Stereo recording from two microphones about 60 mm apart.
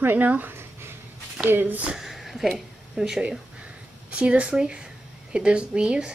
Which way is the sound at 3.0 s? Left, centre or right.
Centre.